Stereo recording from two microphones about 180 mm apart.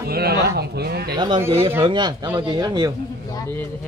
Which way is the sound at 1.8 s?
25° right (ahead or behind).